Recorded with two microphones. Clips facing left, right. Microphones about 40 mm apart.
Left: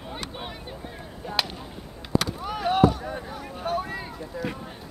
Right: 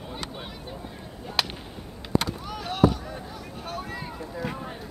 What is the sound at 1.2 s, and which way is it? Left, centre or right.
Speech, centre.